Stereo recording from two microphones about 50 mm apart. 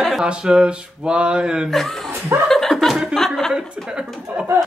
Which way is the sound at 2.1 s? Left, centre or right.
Right.